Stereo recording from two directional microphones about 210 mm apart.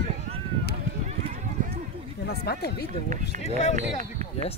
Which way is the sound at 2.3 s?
50° left (ahead or behind).